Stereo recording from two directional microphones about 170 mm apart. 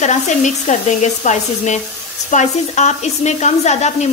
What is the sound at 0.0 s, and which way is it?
A woman's voice, 45° left (ahead or behind).